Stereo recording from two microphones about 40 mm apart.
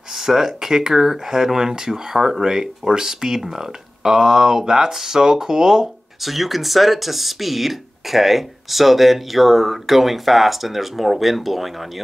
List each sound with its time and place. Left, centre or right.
0.1 s speech: centre
6.2 s speech: centre